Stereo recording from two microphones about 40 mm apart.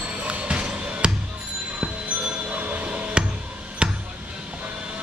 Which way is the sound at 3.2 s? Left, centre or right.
Right.